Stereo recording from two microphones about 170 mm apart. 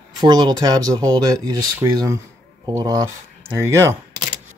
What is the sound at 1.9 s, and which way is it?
Speech, 20° right (ahead or behind).